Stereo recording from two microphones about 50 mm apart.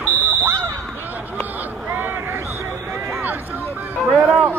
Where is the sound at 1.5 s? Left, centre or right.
Right.